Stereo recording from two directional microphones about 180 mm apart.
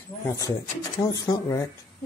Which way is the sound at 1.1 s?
20° left (ahead or behind).